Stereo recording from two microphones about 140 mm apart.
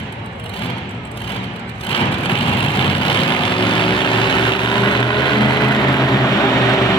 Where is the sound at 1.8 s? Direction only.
40° left (ahead or behind).